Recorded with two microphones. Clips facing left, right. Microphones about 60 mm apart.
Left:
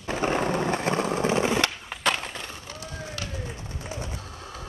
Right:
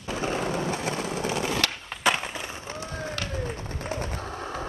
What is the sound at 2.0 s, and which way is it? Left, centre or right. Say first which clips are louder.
Skateboard: right 2 dB; centre.